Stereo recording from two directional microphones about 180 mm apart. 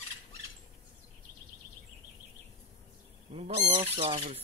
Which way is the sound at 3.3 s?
35° right (ahead or behind).